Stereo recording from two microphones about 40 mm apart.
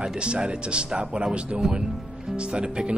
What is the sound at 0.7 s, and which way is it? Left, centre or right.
Speech, right.